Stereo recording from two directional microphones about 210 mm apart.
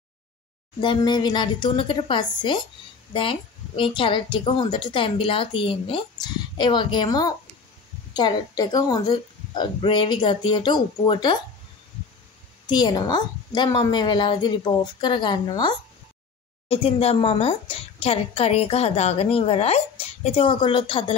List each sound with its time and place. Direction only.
0.7 s a woman's voice: 20° left (ahead or behind)
12.6 s a woman's voice: 20° left (ahead or behind)